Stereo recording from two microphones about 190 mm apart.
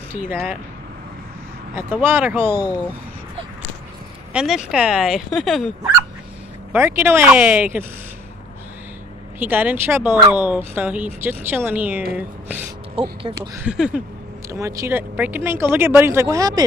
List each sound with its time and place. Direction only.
0.1 s speech: 10° right (ahead or behind)
1.8 s speech: 10° right (ahead or behind)
4.3 s speech: 5° right (ahead or behind)
6.7 s speech: 10° right (ahead or behind)
9.4 s speech: 10° right (ahead or behind)
12.9 s speech: 30° right (ahead or behind)
13.7 s speech: 5° right (ahead or behind)
14.5 s speech: 15° right (ahead or behind)